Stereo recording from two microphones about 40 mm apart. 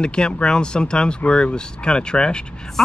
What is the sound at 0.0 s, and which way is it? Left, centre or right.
Speech, left.